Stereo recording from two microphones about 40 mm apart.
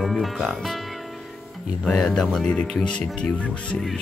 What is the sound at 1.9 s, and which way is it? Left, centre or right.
A man's voice, centre.